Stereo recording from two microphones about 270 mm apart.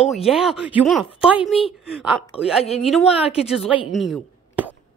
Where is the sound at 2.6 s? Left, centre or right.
Left.